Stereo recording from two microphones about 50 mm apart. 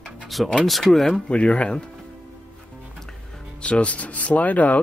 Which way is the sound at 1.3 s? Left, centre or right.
Left.